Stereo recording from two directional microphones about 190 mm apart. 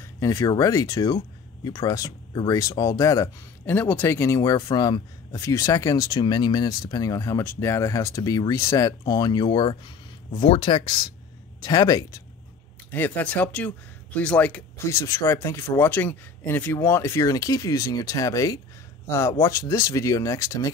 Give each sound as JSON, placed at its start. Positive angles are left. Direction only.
{"t": 0.0, "sound": "speech", "side_deg": 15}
{"t": 12.9, "sound": "speech", "side_deg": 10}